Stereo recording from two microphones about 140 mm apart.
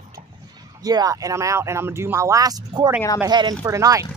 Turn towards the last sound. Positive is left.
turn(degrees=-25)  # may be behind; listen again after turning